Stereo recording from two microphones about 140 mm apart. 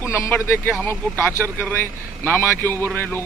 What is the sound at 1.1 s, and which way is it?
Speech, 15° right (ahead or behind).